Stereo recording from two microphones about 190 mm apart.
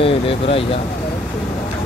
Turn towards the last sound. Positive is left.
turn(degrees=30)  # may be behind; listen again after turning